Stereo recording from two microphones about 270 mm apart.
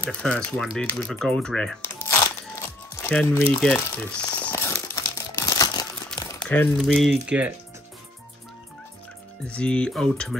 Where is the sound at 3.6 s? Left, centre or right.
Centre.